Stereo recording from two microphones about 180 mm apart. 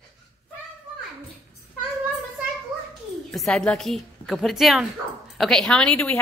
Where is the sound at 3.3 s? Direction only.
5° left (ahead or behind).